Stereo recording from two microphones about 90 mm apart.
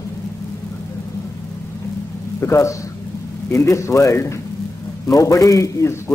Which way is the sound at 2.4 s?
35° left (ahead or behind).